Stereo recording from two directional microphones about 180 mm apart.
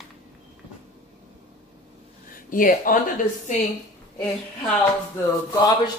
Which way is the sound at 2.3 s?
50° left (ahead or behind).